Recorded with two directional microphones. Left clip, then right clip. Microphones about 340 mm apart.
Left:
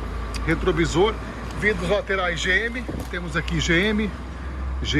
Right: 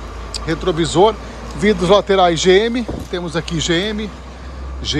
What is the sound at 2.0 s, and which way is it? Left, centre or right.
Speech, centre.